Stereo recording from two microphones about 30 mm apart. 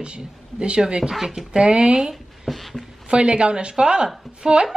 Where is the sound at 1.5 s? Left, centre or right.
Right.